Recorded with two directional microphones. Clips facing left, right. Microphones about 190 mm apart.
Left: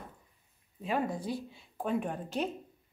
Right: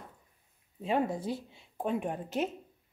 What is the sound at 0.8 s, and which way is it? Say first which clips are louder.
A woman's voice: right 2 dB; 25° right (ahead or behind).